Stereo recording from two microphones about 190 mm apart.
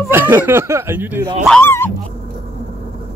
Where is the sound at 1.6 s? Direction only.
10° left (ahead or behind).